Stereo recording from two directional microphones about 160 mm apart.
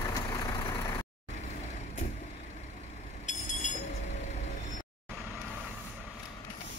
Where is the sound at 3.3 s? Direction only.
50° left (ahead or behind).